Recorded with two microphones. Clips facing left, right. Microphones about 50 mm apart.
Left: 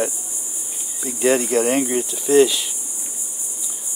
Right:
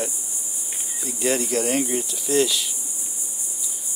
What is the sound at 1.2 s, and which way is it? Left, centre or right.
Speech, left.